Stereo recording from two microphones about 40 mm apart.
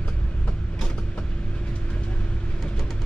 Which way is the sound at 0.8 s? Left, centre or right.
Left.